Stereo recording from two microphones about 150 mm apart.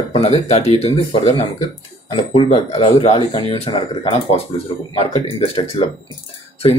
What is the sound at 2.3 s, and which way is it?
Speech, 45° left (ahead or behind).